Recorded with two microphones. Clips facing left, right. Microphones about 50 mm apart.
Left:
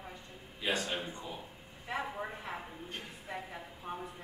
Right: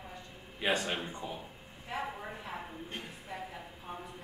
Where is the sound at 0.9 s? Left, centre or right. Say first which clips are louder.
Right 1 dB; right.